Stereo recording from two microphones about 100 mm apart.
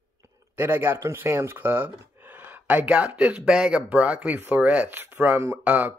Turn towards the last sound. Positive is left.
turn(degrees=-15)  # may be behind; listen again after turning